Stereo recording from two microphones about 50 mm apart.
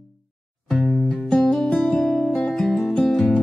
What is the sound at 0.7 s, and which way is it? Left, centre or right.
Music, centre.